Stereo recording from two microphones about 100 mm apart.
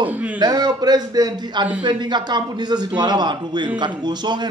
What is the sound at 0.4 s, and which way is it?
A man's voice, 45° right (ahead or behind).